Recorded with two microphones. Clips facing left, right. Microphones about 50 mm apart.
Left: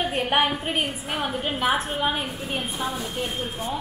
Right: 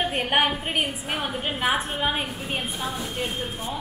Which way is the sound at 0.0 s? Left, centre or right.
Centre.